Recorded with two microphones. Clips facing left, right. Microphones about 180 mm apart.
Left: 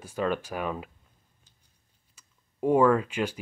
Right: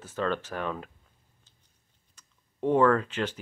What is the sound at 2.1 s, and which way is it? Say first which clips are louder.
Clicking: even; 10° left (ahead or behind).